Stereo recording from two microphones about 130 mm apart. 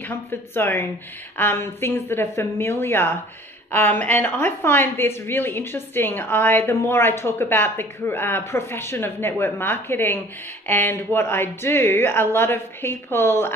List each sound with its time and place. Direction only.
0.3 s a woman's voice: 15° left (ahead or behind)